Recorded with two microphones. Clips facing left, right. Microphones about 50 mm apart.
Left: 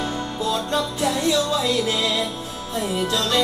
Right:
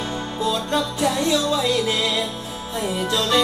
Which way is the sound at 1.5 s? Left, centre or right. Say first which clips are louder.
Right 1 dB; centre.